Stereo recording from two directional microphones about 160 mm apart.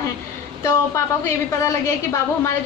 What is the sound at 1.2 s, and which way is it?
A woman's voice, 15° left (ahead or behind).